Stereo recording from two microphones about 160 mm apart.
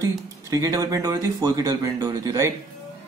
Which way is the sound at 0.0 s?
20° right (ahead or behind).